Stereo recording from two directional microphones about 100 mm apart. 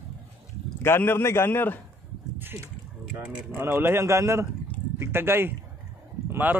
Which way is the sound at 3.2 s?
20° right (ahead or behind).